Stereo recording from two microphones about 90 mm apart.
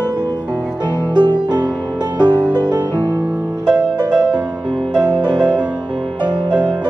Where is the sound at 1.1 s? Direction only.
55° right (ahead or behind).